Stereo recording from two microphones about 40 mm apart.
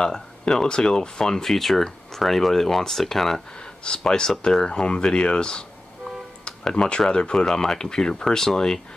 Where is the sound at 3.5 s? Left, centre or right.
Left.